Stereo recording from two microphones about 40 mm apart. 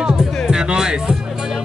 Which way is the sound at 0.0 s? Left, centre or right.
Centre.